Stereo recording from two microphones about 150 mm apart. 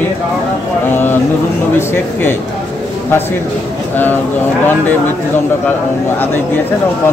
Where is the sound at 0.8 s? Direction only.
15° left (ahead or behind).